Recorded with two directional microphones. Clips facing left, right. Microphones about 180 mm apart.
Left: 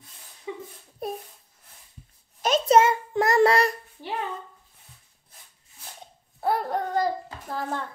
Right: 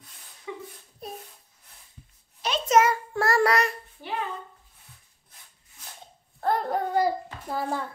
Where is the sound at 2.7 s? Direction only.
25° left (ahead or behind).